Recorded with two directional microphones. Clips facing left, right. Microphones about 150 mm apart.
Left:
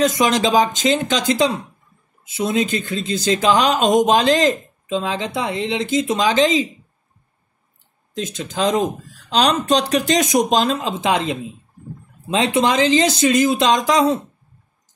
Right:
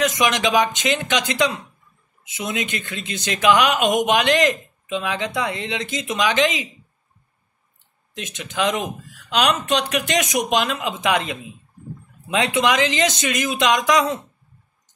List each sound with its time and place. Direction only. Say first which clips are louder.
0.0 s speech: left 3 dB; 30° left (ahead or behind)
8.1 s speech: left 7 dB; 35° left (ahead or behind)